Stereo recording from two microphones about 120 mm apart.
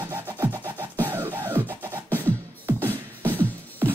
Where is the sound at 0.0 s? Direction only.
20° right (ahead or behind).